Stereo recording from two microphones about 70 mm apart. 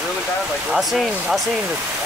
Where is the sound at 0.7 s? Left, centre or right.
Centre.